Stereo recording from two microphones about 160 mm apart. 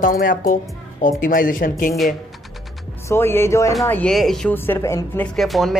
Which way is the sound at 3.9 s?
5° left (ahead or behind).